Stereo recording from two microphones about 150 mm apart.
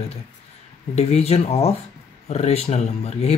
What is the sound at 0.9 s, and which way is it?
Speech, 45° left (ahead or behind).